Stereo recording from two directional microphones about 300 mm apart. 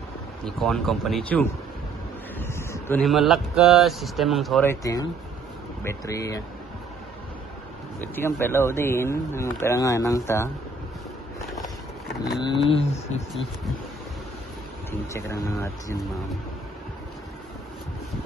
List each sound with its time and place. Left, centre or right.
0.5 s speech: centre
8.0 s speech: centre
12.6 s speech: centre
14.9 s speech: centre